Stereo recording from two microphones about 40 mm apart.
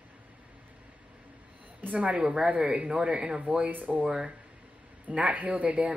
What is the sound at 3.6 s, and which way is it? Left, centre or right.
Speech, right.